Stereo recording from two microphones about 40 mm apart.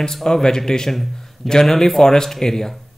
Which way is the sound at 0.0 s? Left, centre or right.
Centre.